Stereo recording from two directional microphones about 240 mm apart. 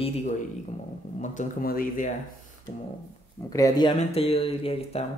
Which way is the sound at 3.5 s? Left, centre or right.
Centre.